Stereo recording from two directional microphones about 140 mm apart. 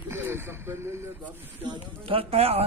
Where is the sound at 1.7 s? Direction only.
40° right (ahead or behind).